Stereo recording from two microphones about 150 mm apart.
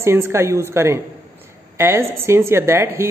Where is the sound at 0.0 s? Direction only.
15° right (ahead or behind).